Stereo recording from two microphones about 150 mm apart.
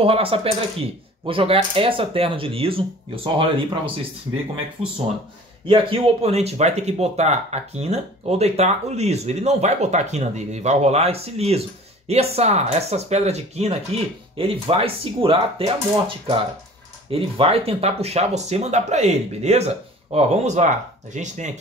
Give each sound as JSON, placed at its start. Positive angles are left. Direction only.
{"t": 0.0, "sound": "speech", "side_deg": -40}